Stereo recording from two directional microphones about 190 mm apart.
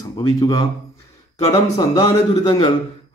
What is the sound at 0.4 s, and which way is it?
A man's voice, 20° left (ahead or behind).